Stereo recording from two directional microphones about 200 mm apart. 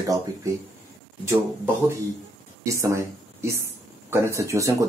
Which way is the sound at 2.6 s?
15° right (ahead or behind).